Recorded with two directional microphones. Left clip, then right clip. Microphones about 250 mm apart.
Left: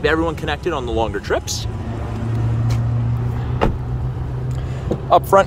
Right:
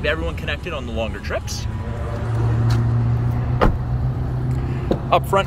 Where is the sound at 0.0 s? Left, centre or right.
Left.